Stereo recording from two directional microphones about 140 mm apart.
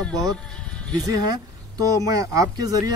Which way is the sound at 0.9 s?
25° right (ahead or behind).